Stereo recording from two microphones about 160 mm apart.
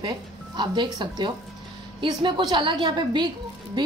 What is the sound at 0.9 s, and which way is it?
A woman's voice, 25° right (ahead or behind).